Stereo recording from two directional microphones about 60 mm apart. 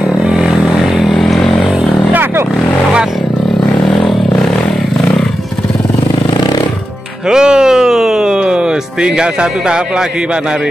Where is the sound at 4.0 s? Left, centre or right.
Centre.